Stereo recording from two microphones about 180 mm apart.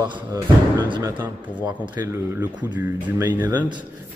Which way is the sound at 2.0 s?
15° right (ahead or behind).